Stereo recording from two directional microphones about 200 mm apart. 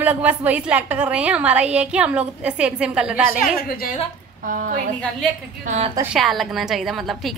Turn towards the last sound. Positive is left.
turn(degrees=0)  # may be behind; listen again after turning